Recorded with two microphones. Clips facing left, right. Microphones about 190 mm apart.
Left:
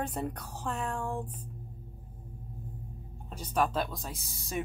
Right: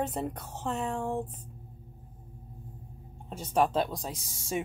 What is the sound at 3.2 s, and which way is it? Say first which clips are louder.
Speech: right 3 dB; 25° right (ahead or behind).